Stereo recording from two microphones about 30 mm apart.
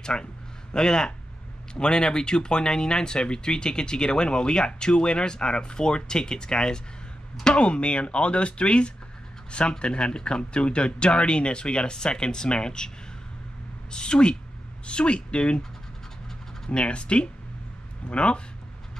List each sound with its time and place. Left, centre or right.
0.0 s speech: left
7.5 s speech: left
13.9 s speech: left
16.7 s speech: left